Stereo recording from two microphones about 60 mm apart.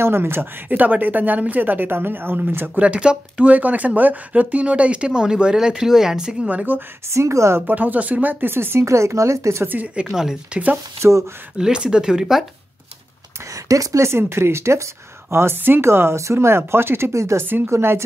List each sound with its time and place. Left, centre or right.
0.0 s speech: right
2.7 s speech: right
6.5 s speech: right
7.2 s a woman's voice: right
7.6 s speech: right
8.8 s speech: right
10.0 s speech: centre
10.5 s speech: right
11.0 s speech: right
11.5 s speech: centre
13.7 s speech: right
14.0 s a woman's voice: right
17.1 s a woman's voice: right